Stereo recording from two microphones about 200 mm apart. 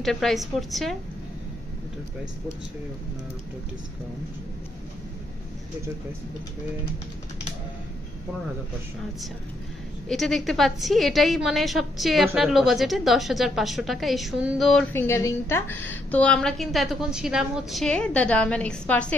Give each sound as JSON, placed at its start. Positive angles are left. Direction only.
{"t": 0.0, "sound": "a woman's voice", "side_deg": 0}
{"t": 10.0, "sound": "a woman's voice", "side_deg": 0}